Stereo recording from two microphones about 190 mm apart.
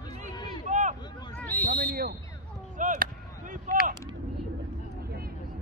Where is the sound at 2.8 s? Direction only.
40° right (ahead or behind).